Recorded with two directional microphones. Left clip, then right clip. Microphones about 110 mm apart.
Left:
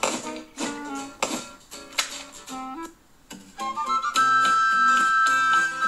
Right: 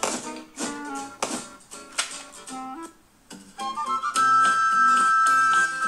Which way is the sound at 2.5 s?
15° left (ahead or behind).